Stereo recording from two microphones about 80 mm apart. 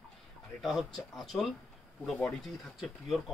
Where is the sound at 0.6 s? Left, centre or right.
Centre.